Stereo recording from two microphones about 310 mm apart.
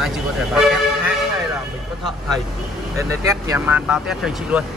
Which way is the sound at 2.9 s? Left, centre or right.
Centre.